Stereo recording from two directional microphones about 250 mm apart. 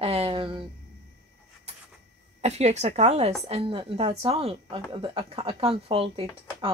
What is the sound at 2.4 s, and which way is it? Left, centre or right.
A woman's voice, right.